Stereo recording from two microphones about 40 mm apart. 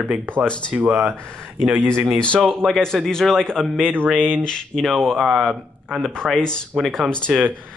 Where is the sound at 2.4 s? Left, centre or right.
Centre.